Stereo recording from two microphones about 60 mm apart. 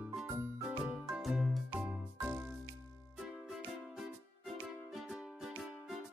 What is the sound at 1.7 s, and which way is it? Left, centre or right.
Music, centre.